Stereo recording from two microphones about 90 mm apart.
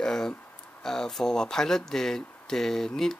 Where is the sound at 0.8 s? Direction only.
5° left (ahead or behind).